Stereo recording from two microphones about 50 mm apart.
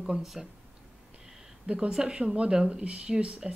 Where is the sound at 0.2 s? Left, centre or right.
Centre.